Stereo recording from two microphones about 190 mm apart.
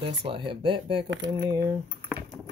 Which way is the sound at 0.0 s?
25° right (ahead or behind).